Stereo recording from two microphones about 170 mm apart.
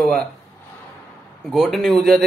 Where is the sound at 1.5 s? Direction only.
Centre (ahead or behind).